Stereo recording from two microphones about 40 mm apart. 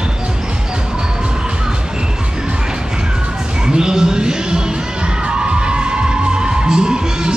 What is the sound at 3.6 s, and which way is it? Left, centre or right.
Music, centre.